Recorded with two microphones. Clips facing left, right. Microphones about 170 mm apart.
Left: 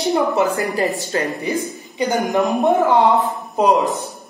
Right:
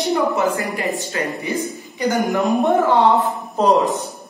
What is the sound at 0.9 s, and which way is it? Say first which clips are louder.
Speech: left 3 dB; 35° left (ahead or behind).